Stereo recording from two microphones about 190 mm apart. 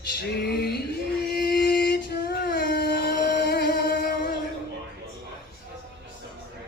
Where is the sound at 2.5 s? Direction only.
60° left (ahead or behind).